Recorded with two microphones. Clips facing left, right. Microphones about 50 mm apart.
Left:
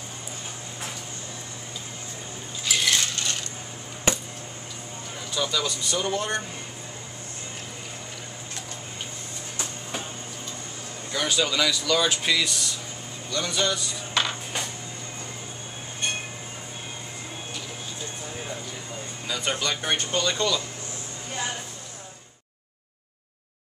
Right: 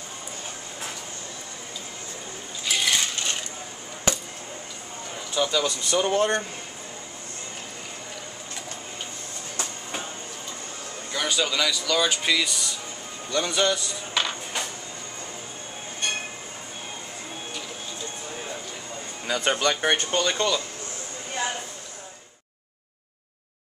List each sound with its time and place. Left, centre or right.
2.6 s a sound: centre
5.4 s speech: centre
5.9 s speech: right
11.1 s speech: centre
13.3 s speech: centre
14.2 s music: centre
19.2 s speech: right
20.1 s speech: right